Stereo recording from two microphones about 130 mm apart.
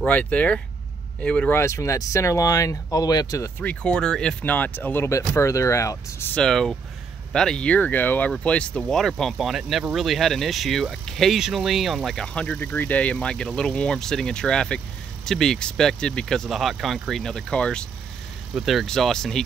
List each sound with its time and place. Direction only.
0.0 s speech: 10° left (ahead or behind)
1.6 s speech: 20° left (ahead or behind)
6.3 s speech: 5° left (ahead or behind)